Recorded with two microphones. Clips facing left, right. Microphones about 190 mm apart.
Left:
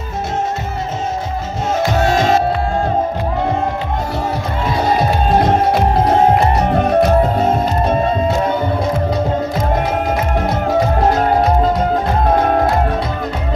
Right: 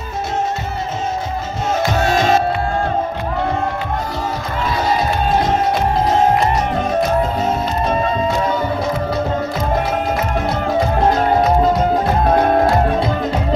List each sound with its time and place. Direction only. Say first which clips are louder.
4.8 s music: left 3 dB; 55° left (ahead or behind)